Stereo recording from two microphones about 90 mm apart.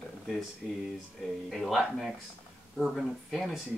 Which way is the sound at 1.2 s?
Centre (ahead or behind).